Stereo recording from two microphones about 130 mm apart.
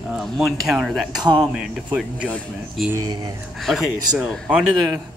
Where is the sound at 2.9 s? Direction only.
30° right (ahead or behind).